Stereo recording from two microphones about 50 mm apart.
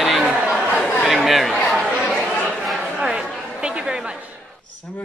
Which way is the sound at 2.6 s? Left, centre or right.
Centre.